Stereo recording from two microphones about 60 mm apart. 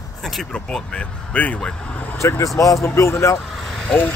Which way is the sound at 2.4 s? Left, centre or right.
Left.